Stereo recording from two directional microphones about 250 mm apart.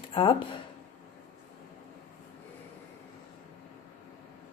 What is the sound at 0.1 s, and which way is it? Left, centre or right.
Speech, centre.